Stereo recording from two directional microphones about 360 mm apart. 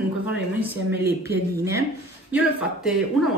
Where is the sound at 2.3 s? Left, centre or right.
Centre.